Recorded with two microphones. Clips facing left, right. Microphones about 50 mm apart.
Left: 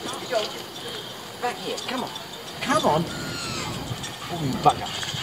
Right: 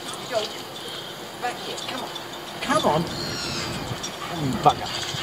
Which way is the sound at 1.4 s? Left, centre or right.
Centre.